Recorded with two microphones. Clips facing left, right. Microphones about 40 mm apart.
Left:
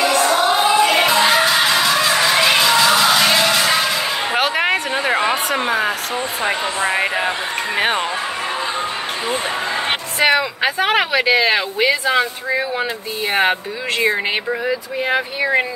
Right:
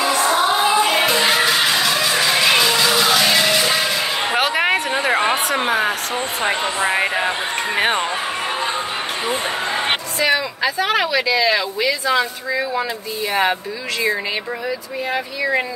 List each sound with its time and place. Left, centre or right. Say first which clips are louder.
1.1 s music: left 2 dB; left
2.6 s music: left 3 dB; centre
4.3 s a sound: even; centre
6.4 s speech: even; centre
10.2 s speech: left 3 dB; left
13.3 s speech: left 2 dB; left
14.7 s speech: left 4 dB; left